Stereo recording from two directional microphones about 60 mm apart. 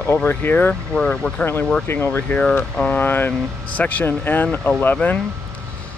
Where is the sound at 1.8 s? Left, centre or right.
Left.